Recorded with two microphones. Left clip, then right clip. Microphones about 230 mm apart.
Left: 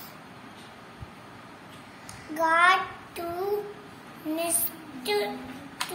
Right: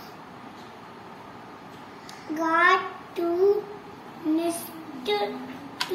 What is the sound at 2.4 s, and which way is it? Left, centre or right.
Speech, left.